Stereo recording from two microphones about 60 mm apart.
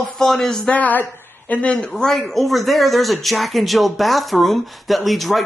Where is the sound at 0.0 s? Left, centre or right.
Centre.